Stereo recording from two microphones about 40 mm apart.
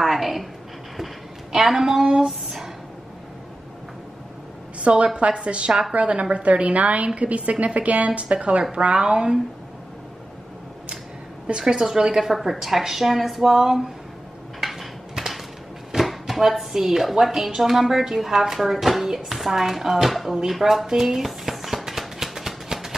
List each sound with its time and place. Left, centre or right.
0.0 s a sound: centre
1.5 s a woman's voice: centre
4.7 s a woman's voice: right
11.4 s a woman's voice: centre
14.6 s a sound: centre
16.0 s a woman's voice: centre
21.8 s music: centre